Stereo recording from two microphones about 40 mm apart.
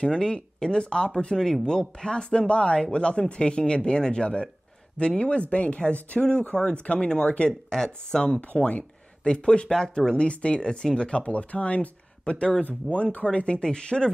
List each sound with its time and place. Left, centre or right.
0.0 s speech: left
7.7 s speech: centre
8.4 s speech: left
12.9 s speech: left; by 14.1 s centre